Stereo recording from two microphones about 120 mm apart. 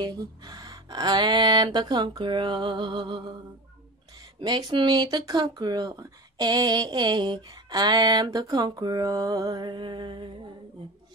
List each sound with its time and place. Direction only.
0.0 s speech: 35° right (ahead or behind)
4.4 s speech: 40° right (ahead or behind)